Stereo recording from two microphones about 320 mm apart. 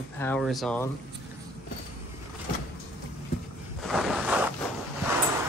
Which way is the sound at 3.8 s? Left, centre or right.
Centre.